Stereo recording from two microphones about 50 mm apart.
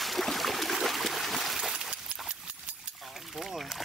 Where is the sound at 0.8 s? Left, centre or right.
Centre.